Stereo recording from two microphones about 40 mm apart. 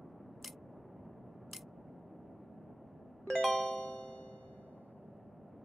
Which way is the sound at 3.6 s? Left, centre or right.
Left.